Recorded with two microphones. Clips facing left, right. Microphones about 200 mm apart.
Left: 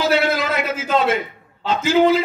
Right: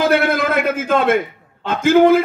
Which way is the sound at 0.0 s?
55° right (ahead or behind).